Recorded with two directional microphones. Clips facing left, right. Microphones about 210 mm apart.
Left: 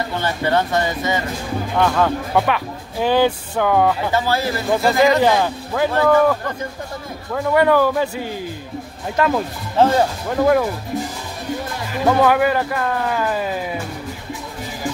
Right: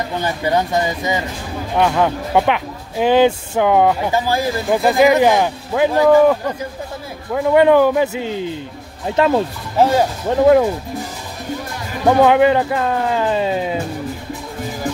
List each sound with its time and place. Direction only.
0.2 s speech: 15° right (ahead or behind)
9.8 s speech: 10° right (ahead or behind)
10.3 s speech: 25° right (ahead or behind)
12.2 s speech: 25° right (ahead or behind)